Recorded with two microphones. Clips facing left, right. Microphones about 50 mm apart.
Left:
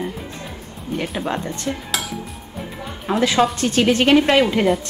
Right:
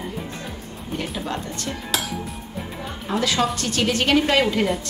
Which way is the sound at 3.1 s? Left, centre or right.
Left.